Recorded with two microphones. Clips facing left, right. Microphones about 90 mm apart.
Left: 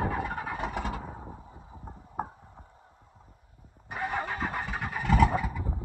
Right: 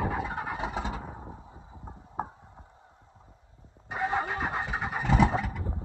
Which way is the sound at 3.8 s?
20° right (ahead or behind).